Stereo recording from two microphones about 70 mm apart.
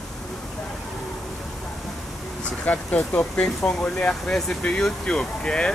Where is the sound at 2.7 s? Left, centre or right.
Left.